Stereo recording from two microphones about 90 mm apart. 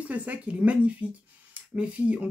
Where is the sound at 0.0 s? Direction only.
15° right (ahead or behind).